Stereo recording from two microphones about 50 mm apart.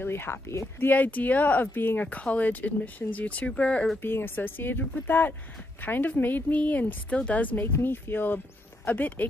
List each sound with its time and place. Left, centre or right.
0.0 s speech: left
0.7 s speech: left
2.0 s speech: left
4.0 s speech: left
8.8 s speech: left